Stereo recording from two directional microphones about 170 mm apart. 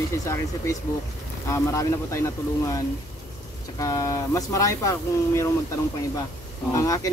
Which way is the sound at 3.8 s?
20° left (ahead or behind).